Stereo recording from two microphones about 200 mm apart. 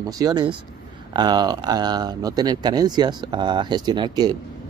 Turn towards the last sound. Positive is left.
turn(degrees=-20)  # may be behind; listen again after turning